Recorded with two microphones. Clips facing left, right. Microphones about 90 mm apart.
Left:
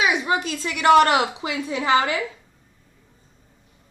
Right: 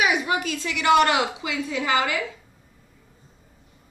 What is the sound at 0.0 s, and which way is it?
A woman's voice, 25° left (ahead or behind).